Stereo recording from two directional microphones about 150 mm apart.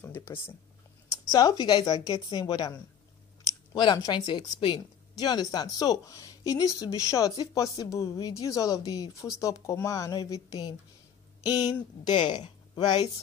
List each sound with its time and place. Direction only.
0.0 s speech: 15° left (ahead or behind)
1.3 s speech: 25° left (ahead or behind)
3.7 s speech: 30° left (ahead or behind)